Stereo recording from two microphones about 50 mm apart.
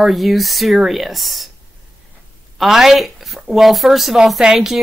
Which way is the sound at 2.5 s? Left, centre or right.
Centre.